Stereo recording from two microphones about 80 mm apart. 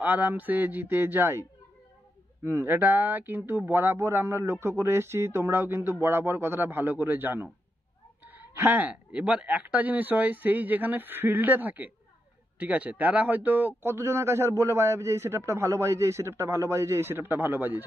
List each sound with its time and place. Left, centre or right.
0.0 s speech: right
2.4 s speech: right